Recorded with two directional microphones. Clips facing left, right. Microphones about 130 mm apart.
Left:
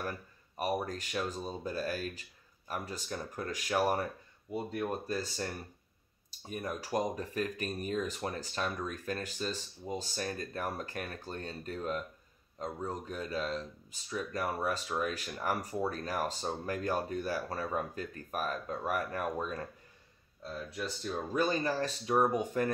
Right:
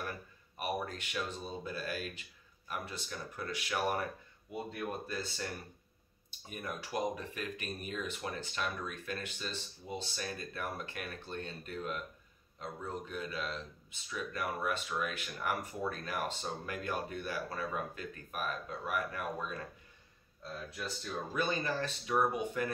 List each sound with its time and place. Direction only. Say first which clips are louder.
0.6 s speech: left 4 dB; 40° left (ahead or behind)
20.7 s speech: left 4 dB; 35° left (ahead or behind)